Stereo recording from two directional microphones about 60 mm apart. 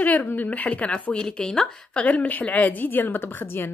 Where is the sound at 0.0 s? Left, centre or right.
Left.